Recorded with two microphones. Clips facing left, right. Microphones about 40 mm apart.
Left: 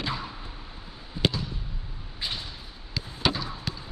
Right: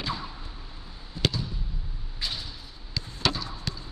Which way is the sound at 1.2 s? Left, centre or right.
Centre.